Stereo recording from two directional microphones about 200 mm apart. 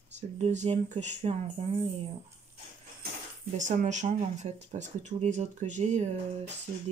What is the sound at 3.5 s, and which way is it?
Speech, 35° right (ahead or behind).